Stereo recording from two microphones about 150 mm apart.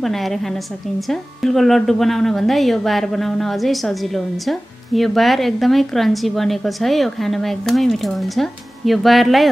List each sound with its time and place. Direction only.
0.0 s a woman's voice: centre (ahead or behind)